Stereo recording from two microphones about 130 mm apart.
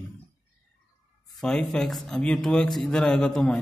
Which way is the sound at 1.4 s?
5° left (ahead or behind).